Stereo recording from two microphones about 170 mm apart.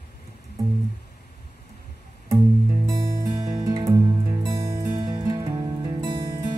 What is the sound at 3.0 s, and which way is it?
Music, 25° right (ahead or behind).